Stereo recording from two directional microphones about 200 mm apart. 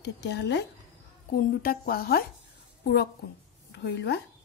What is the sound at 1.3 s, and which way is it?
A woman's voice, 45° left (ahead or behind).